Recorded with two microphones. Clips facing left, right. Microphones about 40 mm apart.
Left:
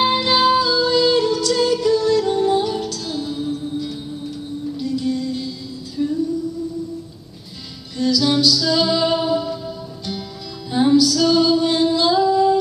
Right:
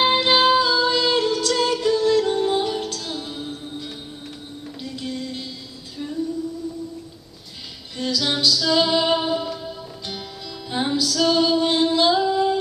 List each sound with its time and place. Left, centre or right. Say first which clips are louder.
0.0 s music: left 1 dB; centre
6.0 s music: left 10 dB; centre
8.0 s music: left 5 dB; centre